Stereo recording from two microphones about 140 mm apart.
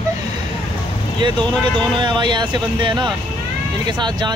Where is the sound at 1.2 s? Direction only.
35° right (ahead or behind).